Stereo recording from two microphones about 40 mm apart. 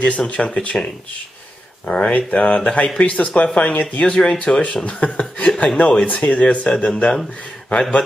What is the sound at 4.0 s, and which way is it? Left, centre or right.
Speech, left.